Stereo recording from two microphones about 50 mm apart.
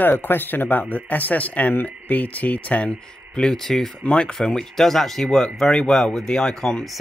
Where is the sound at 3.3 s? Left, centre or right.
Centre.